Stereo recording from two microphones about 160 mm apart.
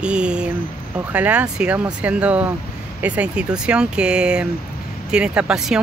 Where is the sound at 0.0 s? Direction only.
5° right (ahead or behind).